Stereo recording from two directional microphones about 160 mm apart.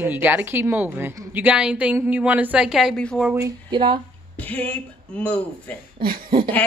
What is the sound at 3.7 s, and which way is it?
Speech, 30° right (ahead or behind).